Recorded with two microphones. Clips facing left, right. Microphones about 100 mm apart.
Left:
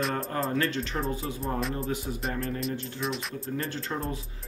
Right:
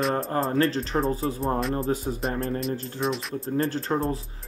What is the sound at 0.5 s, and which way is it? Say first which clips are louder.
Speech: right 5 dB; 35° right (ahead or behind).